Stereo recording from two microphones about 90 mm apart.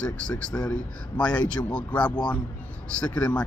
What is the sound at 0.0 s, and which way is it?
A man's voice, 15° left (ahead or behind).